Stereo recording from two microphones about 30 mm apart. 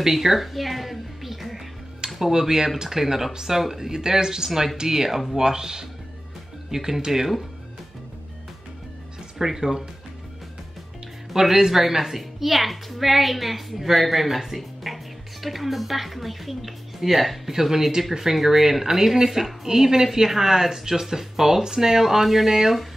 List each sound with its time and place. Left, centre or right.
0.0 s speech: centre
2.1 s speech: centre
9.4 s speech: centre
11.3 s a woman's voice: centre